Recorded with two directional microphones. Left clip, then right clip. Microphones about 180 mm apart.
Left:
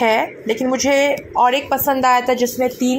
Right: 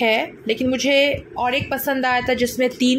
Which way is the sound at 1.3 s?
10° left (ahead or behind).